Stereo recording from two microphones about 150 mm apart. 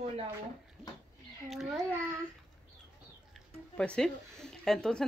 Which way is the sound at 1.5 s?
Centre (ahead or behind).